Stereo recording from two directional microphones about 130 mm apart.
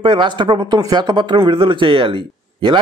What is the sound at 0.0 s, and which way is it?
Speech, 40° right (ahead or behind).